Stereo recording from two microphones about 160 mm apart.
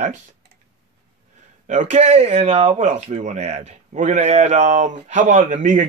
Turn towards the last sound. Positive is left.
turn(degrees=-50)  # may be behind; listen again after turning